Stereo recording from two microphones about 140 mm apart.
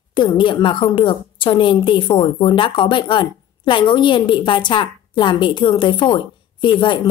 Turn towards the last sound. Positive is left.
turn(degrees=35)  # may be behind; listen again after turning